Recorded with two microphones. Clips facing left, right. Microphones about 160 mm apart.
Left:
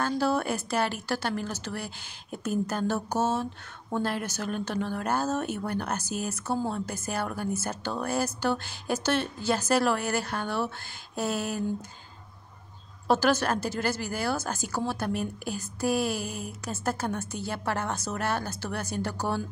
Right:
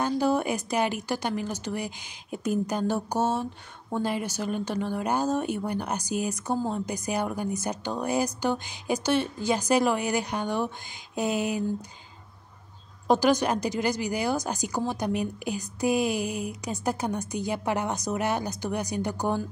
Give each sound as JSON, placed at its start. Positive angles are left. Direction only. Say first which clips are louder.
{"t": 0.0, "sound": "speech", "louder": "right 2 dB", "side_deg": -15}
{"t": 13.1, "sound": "speech", "louder": "right 2 dB", "side_deg": -15}